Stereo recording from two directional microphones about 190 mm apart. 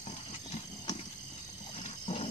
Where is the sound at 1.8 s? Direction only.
35° left (ahead or behind).